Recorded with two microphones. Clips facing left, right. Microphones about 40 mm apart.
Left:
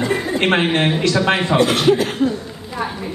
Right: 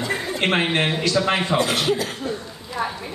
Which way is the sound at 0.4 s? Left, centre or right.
Left.